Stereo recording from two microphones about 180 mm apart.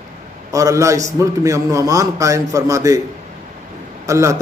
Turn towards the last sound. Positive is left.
turn(degrees=-15)  # may be behind; listen again after turning